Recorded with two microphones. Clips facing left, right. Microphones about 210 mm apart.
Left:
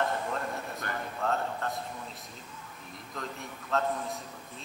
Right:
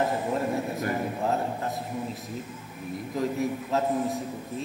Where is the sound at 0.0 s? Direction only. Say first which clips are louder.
Right 5 dB; 5° right (ahead or behind).